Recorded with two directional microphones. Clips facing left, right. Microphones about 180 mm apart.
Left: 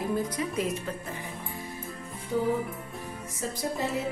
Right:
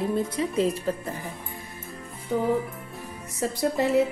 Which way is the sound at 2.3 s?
65° right (ahead or behind).